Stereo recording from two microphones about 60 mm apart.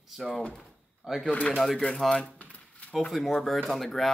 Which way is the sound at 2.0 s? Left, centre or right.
Centre.